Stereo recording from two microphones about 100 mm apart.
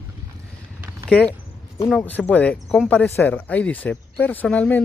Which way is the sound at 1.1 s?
15° left (ahead or behind).